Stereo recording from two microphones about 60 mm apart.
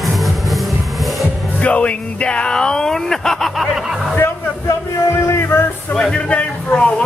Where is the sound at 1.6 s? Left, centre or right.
Left.